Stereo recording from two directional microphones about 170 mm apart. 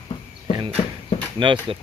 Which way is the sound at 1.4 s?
30° right (ahead or behind).